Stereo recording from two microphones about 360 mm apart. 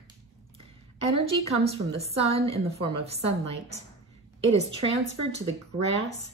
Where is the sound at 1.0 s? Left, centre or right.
Centre.